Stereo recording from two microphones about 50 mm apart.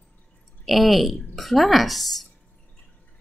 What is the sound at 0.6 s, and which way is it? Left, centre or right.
Speech, centre.